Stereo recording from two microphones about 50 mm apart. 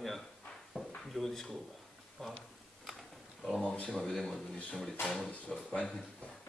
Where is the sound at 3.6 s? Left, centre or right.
Left.